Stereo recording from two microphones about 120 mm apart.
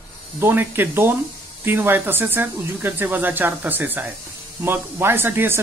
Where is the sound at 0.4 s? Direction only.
15° right (ahead or behind).